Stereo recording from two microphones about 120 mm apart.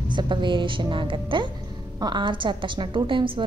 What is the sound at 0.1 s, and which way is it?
A woman's voice, 40° right (ahead or behind).